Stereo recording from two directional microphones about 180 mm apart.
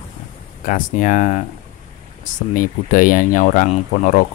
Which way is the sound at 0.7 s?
45° left (ahead or behind).